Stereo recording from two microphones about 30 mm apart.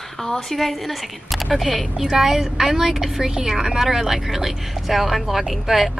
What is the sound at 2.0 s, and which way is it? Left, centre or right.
A woman's voice, centre.